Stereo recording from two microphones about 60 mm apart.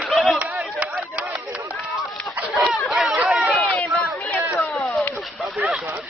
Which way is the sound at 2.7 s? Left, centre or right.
Centre.